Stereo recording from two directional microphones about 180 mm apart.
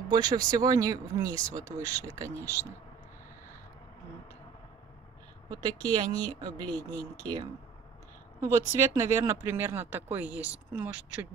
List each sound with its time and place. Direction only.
0.1 s speech: 20° right (ahead or behind)
5.5 s speech: 20° right (ahead or behind)
8.5 s speech: 15° right (ahead or behind)